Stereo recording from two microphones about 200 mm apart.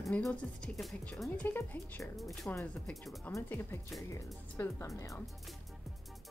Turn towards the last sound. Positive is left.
turn(degrees=15)  # may be behind; listen again after turning